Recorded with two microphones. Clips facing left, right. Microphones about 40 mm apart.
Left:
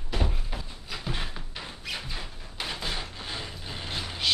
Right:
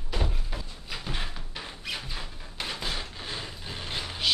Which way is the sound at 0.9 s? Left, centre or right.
Centre.